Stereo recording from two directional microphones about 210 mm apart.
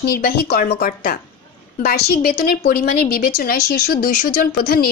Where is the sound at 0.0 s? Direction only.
45° left (ahead or behind).